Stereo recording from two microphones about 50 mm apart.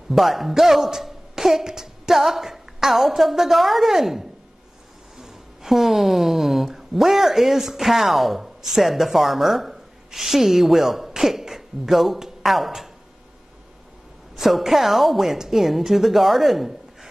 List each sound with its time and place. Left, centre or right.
0.1 s speech: centre
14.3 s speech: centre